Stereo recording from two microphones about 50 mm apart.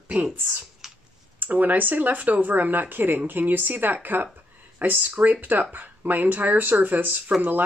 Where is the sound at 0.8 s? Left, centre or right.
Centre.